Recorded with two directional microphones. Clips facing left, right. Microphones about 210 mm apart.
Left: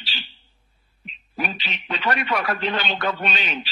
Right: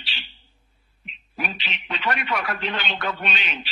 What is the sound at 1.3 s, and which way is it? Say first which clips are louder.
A man's voice: left 3 dB; 40° left (ahead or behind).